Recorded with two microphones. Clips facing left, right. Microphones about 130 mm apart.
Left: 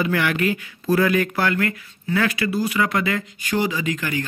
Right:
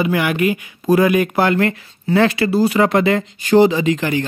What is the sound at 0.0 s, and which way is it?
Speech, 15° right (ahead or behind).